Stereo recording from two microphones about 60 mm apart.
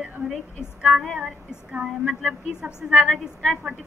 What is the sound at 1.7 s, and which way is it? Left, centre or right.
A woman's voice, centre.